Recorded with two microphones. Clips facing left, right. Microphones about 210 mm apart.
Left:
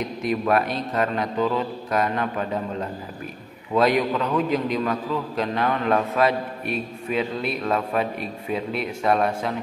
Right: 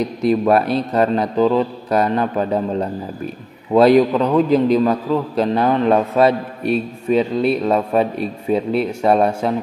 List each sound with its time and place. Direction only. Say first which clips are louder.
0.0 s a man's voice: right 8 dB; 35° right (ahead or behind)